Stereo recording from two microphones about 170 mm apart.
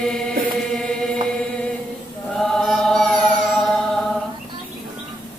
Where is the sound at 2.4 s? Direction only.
Centre (ahead or behind).